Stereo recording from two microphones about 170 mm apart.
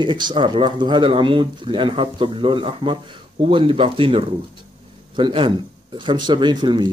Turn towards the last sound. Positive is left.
turn(degrees=-25)  # may be behind; listen again after turning